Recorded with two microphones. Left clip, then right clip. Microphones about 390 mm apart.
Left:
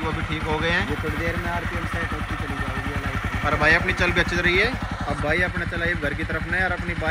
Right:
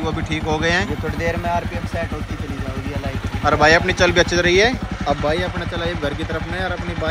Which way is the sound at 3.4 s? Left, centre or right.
Centre.